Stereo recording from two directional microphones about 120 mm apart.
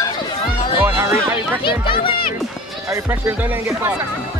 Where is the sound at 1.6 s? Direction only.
45° left (ahead or behind).